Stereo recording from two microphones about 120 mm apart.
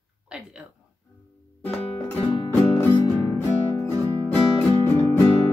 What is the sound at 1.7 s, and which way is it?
Music, 15° left (ahead or behind).